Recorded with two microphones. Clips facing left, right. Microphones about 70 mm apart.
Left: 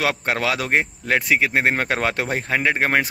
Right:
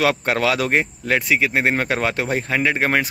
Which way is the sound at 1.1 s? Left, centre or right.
Left.